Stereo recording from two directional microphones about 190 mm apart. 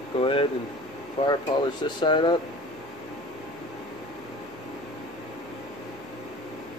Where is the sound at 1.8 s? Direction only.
25° left (ahead or behind).